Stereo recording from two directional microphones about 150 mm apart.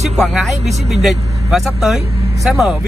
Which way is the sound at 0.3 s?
Centre (ahead or behind).